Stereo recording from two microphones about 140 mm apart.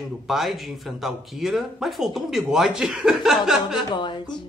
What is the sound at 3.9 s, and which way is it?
Speech, 35° left (ahead or behind).